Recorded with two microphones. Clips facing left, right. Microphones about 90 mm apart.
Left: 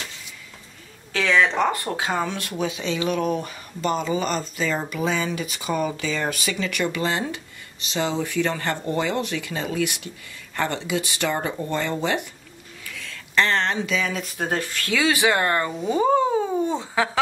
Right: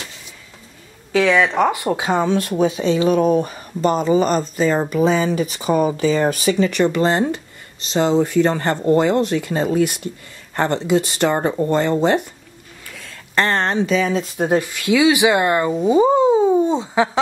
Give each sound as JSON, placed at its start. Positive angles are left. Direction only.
{"t": 1.1, "sound": "speech", "side_deg": -10}
{"t": 14.4, "sound": "speech", "side_deg": -15}
{"t": 16.0, "sound": "cat", "side_deg": -20}